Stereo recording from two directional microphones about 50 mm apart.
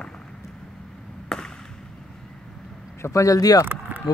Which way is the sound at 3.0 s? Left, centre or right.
Left.